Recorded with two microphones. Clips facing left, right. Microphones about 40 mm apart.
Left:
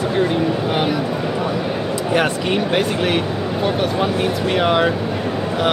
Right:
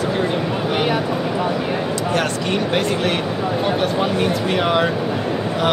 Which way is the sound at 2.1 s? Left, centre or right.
Centre.